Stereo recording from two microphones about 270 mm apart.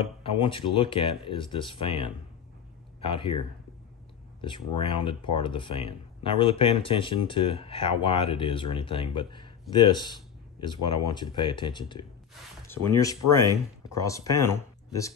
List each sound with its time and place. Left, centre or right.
0.0 s speech: centre